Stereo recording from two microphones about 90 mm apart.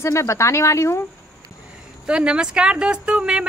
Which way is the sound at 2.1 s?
10° right (ahead or behind).